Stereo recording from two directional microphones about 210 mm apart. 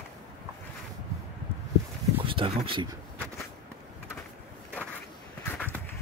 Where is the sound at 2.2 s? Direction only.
25° right (ahead or behind).